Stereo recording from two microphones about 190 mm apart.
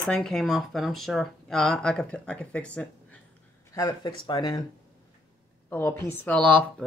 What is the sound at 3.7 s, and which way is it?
Speech, 20° left (ahead or behind).